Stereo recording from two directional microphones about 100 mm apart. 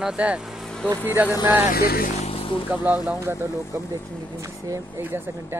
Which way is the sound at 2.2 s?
70° left (ahead or behind).